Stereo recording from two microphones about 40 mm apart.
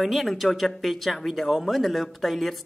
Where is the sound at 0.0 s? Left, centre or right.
Centre.